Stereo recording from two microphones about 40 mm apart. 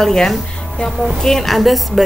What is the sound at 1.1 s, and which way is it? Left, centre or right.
Speech, centre.